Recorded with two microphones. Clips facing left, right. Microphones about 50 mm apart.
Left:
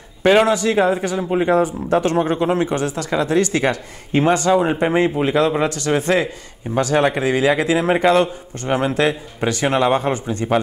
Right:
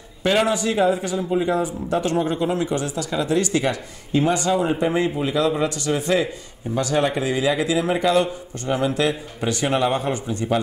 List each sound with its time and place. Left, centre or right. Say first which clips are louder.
0.2 s a man's voice: left 5 dB; left